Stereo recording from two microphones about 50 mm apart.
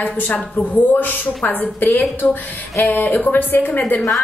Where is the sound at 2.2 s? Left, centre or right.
Centre.